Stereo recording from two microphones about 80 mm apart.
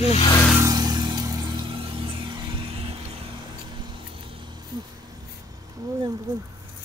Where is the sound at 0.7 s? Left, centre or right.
Right.